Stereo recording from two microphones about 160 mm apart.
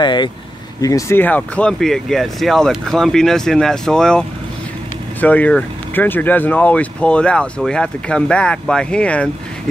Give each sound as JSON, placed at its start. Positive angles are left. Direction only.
{"t": 0.0, "sound": "speech", "side_deg": 30}